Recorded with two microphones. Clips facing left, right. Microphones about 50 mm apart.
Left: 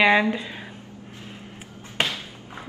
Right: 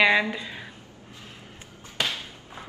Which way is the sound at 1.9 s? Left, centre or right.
Left.